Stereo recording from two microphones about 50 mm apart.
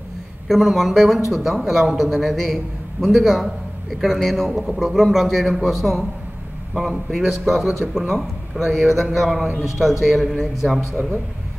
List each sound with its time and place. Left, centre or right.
0.5 s a man's voice: centre